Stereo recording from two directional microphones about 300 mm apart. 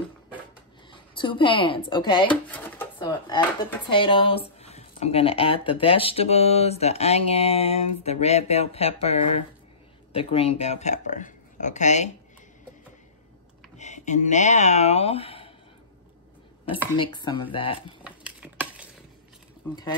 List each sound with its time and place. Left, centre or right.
1.1 s speech: centre
13.7 s speech: left
16.9 s speech: centre
18.0 s a sound: centre
19.7 s speech: centre